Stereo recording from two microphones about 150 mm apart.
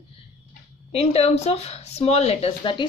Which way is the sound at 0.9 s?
40° left (ahead or behind).